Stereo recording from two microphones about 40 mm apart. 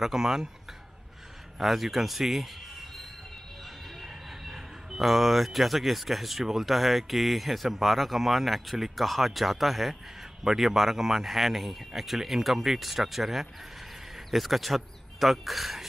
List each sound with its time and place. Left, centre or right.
0.0 s a man's voice: centre
1.6 s a man's voice: centre